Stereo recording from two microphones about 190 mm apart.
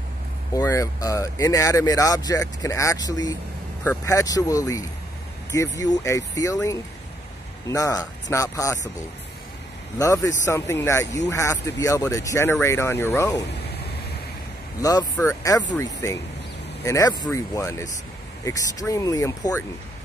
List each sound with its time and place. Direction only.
0.6 s speech: 15° left (ahead or behind)
9.9 s speech: 15° left (ahead or behind)
14.8 s speech: 20° left (ahead or behind)